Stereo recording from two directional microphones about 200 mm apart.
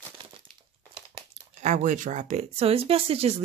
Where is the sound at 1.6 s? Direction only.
35° right (ahead or behind).